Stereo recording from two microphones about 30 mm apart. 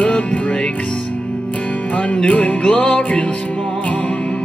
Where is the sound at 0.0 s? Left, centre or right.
Left.